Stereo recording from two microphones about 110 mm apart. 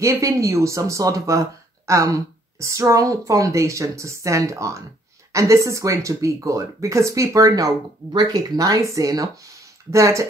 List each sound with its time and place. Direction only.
0.0 s speech: 30° right (ahead or behind)